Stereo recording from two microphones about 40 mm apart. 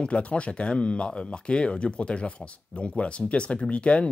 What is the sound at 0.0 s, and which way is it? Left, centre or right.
Speech, left.